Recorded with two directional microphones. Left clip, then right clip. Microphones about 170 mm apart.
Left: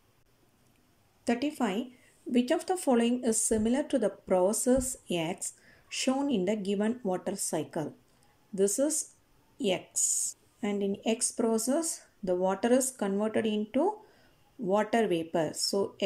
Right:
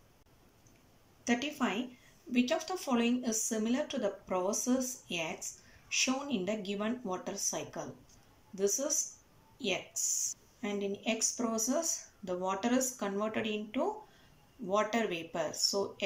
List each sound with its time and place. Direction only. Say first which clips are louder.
1.2 s speech: left 3 dB; 30° left (ahead or behind)
10.6 s speech: left 5 dB; 35° left (ahead or behind)